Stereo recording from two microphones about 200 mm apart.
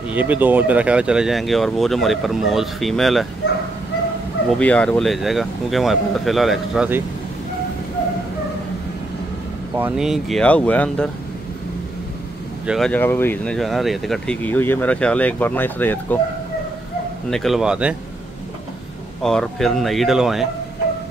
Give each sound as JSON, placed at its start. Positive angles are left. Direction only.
{"t": 0.1, "sound": "speech", "side_deg": -10}
{"t": 4.5, "sound": "speech", "side_deg": 5}
{"t": 9.8, "sound": "speech", "side_deg": -5}
{"t": 12.6, "sound": "speech", "side_deg": 0}
{"t": 17.3, "sound": "speech", "side_deg": 0}
{"t": 19.2, "sound": "speech", "side_deg": 0}